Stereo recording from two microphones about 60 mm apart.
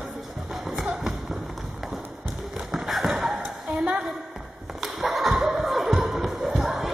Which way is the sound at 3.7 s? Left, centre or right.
Right.